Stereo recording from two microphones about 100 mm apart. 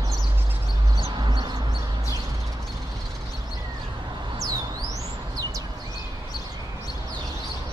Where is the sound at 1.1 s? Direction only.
50° right (ahead or behind).